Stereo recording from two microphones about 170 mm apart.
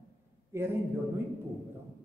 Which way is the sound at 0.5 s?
15° right (ahead or behind).